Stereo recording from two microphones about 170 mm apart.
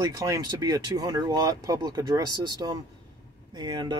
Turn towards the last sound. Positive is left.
turn(degrees=-25)  # may be behind; listen again after turning